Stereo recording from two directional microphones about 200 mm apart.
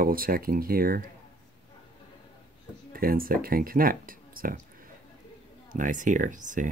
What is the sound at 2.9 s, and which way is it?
Speech, 45° right (ahead or behind).